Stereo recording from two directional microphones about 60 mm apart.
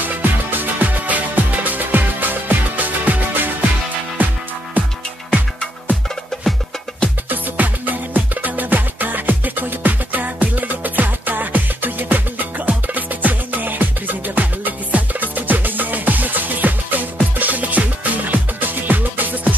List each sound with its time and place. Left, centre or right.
0.0 s music: right
6.9 s music: centre
7.2 s music: right